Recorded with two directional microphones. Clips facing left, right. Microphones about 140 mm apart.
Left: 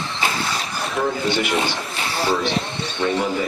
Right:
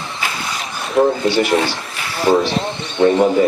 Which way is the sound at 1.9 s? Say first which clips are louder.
Left 1 dB; 30° left (ahead or behind).